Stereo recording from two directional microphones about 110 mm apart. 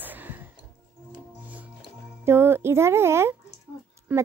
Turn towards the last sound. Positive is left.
turn(degrees=-15)  # may be behind; listen again after turning